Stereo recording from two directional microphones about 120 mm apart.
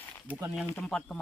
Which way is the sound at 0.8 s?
5° left (ahead or behind).